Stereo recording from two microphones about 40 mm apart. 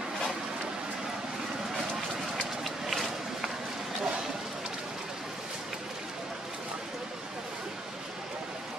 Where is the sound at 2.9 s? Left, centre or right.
Centre.